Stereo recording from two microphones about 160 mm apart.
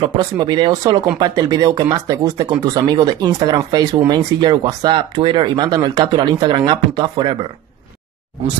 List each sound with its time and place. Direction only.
0.0 s speech: 30° right (ahead or behind)